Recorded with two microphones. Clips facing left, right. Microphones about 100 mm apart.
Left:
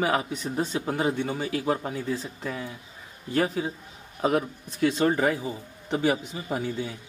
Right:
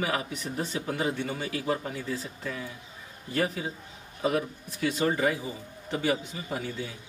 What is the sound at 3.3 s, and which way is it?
Speech, 40° left (ahead or behind).